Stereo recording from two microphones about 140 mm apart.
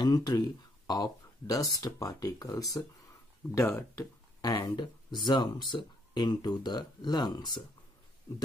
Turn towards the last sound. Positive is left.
turn(degrees=30)  # may be behind; listen again after turning